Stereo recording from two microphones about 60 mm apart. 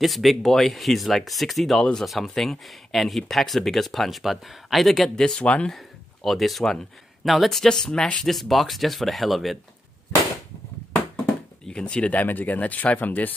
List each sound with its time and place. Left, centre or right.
0.0 s speech: centre
5.7 s speech: centre
8.2 s speech: centre
11.6 s speech: centre; by 13.3 s left